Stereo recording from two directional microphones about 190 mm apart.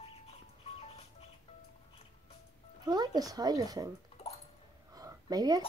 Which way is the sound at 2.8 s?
20° right (ahead or behind).